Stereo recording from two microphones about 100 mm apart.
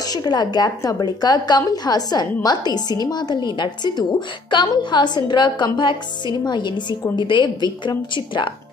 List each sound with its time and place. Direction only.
0.0 s a woman's voice: 40° left (ahead or behind)